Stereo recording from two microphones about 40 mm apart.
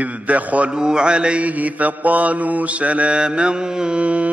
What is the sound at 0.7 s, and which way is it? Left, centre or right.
Mantra, centre.